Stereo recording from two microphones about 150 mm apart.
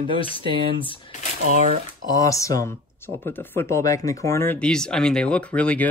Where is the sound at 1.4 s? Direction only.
65° right (ahead or behind).